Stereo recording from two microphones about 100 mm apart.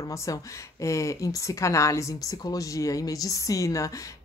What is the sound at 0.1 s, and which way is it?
Speech, 35° left (ahead or behind).